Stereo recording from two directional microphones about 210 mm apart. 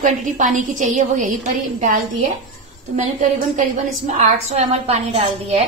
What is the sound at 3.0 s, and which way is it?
A woman's voice, 35° right (ahead or behind).